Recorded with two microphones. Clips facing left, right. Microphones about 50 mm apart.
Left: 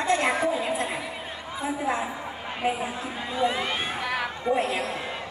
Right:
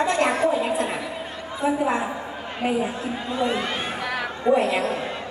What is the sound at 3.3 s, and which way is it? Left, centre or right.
Speech, left.